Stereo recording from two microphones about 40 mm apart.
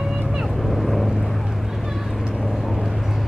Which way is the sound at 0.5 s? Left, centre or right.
Centre.